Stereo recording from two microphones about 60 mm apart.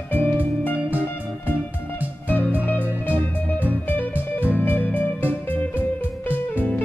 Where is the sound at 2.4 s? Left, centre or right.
Right.